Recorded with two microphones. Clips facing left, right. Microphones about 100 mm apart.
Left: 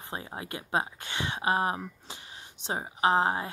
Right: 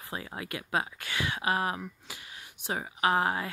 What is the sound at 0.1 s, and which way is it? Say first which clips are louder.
Speech: even; 30° left (ahead or behind).